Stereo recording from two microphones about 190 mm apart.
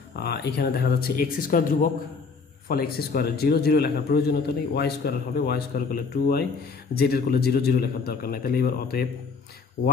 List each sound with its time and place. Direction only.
0.1 s a man's voice: 60° left (ahead or behind)